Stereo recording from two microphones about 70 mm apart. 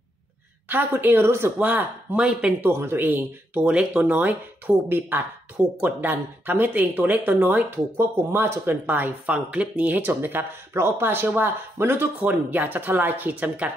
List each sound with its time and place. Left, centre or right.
0.7 s speech: right
1.6 s speech: right
3.6 s speech: centre